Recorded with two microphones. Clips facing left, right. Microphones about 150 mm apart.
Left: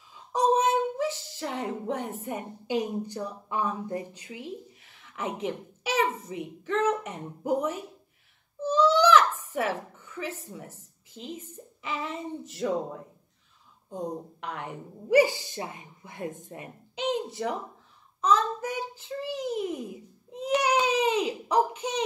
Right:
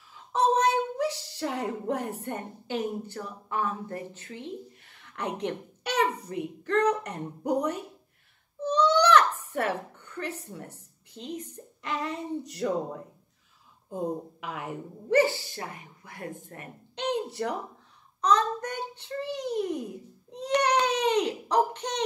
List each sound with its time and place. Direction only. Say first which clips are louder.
0.3 s a sound: even; 10° left (ahead or behind)
2.6 s speech: left 3 dB; 15° left (ahead or behind)
8.5 s baby cry: left 1 dB; 5° left (ahead or behind)
9.5 s speech: even; centre (ahead or behind)
15.0 s speech: left 2 dB; 15° left (ahead or behind)
16.9 s a woman's voice: even; 5° left (ahead or behind)
18.2 s child singing: even; 5° left (ahead or behind)